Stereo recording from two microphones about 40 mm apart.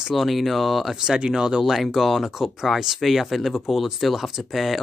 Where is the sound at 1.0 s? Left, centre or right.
Centre.